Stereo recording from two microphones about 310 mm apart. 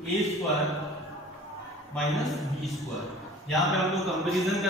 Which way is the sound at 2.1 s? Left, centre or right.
Centre.